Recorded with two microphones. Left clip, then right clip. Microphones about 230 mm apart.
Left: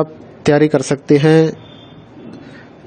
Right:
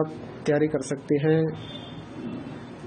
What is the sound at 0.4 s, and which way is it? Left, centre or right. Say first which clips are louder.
A man's voice: left 11 dB; left.